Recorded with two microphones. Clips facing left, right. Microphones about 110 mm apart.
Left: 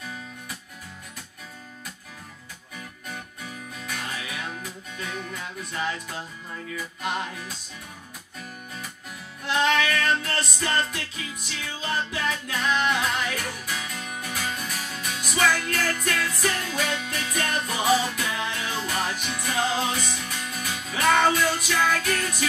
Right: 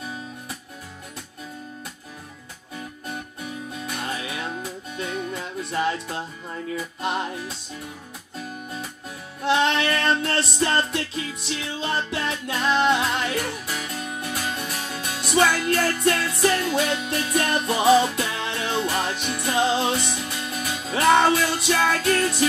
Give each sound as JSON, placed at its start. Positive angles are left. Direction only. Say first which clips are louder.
{"t": 3.8, "sound": "music", "louder": "right 3 dB", "side_deg": -25}
{"t": 9.4, "sound": "music", "louder": "right 2 dB", "side_deg": -25}